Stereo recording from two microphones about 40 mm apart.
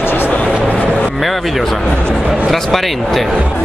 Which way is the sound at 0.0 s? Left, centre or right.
Left.